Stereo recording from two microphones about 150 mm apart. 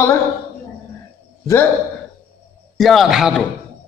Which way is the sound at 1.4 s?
15° left (ahead or behind).